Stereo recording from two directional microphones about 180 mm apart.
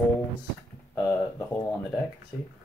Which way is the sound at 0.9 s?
15° left (ahead or behind).